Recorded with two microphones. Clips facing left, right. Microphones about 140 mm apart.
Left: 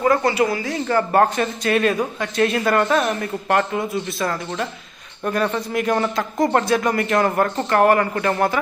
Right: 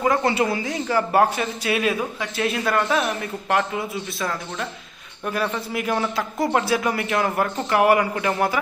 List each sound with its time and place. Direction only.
0.1 s speech: 25° right (ahead or behind)
0.8 s speech: 10° right (ahead or behind)